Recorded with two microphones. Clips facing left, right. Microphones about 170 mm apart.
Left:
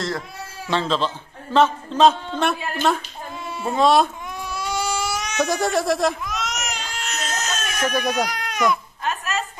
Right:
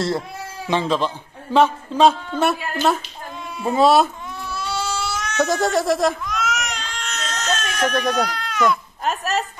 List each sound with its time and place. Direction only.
0.7 s a man's voice: 15° right (ahead or behind)
4.5 s baby cry: 10° left (ahead or behind)
5.4 s baby cry: centre (ahead or behind)
9.0 s a sound: 40° right (ahead or behind)